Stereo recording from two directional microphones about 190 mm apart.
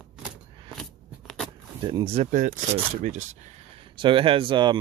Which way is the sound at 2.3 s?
45° right (ahead or behind).